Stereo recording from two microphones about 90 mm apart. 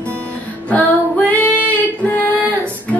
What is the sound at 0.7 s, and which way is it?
Female singing, 15° left (ahead or behind).